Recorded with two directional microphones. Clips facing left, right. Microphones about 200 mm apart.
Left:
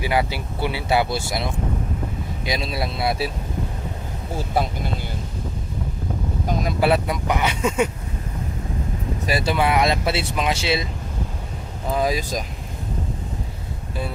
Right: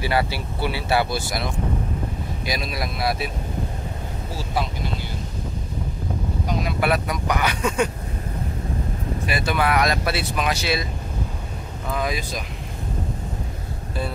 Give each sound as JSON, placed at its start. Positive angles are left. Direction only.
{"t": 0.0, "sound": "speech", "side_deg": 15}
{"t": 6.8, "sound": "speech", "side_deg": 25}
{"t": 9.3, "sound": "speech", "side_deg": 30}
{"t": 11.9, "sound": "speech", "side_deg": 35}